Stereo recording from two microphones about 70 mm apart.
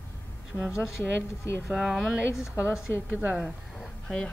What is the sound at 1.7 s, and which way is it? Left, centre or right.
Speech, centre.